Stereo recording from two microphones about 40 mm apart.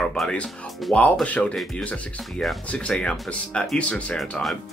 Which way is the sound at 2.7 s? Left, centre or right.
Left.